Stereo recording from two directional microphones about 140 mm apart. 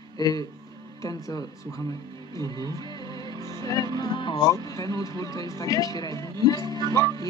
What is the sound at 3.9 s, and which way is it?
Speech, 35° left (ahead or behind).